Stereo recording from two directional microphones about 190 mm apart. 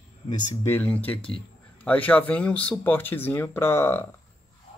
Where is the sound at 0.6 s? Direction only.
10° left (ahead or behind).